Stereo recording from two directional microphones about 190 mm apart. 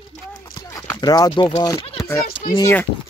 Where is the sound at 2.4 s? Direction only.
20° left (ahead or behind).